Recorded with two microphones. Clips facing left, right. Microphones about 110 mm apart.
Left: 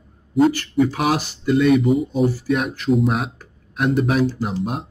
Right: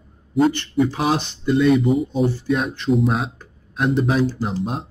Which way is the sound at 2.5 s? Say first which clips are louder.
Even; 30° right (ahead or behind).